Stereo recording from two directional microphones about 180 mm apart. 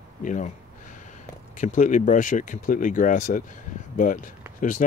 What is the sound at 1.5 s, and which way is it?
Speech, 45° left (ahead or behind).